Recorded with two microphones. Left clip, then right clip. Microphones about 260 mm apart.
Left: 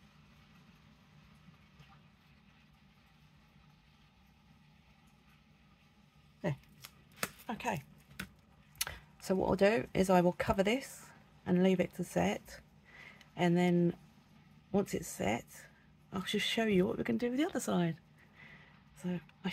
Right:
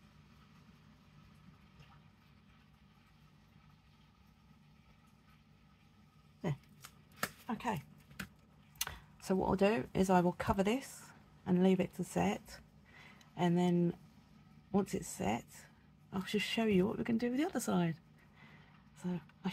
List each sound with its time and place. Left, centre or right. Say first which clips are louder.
6.4 s chopping: left 4 dB; left
8.7 s speech: left 2 dB; left
18.9 s a sound: left 2 dB; left